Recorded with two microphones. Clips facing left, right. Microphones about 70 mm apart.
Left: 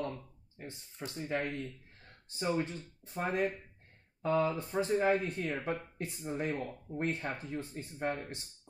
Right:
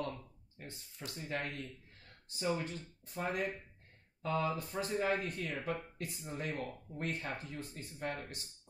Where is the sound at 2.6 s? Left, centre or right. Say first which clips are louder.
Left 2 dB; left.